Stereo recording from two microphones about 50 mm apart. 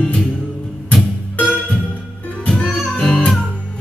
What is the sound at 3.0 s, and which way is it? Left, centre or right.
Music, centre.